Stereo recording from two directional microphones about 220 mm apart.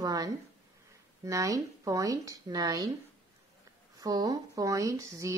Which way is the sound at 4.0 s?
15° right (ahead or behind).